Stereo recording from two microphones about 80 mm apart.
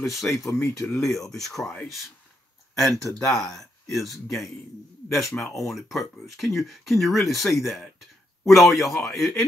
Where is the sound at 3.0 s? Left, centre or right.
Centre.